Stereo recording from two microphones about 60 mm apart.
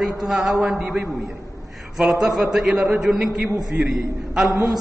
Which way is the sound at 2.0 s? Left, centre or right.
Centre.